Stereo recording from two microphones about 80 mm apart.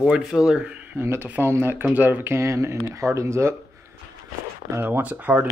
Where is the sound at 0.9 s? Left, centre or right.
Right.